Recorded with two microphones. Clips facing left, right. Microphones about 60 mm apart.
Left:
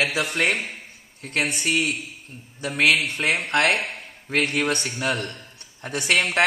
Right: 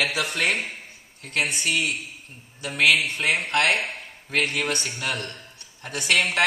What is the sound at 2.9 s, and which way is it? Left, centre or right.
Speech, centre.